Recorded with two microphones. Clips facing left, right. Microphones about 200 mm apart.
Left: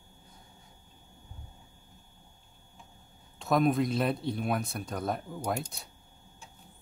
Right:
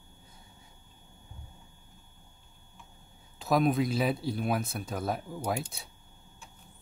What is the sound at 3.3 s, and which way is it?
Speech, centre (ahead or behind).